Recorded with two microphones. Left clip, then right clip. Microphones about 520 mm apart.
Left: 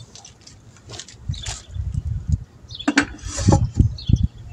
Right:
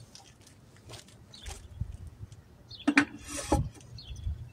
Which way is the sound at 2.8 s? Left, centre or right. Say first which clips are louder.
Left 6 dB; right.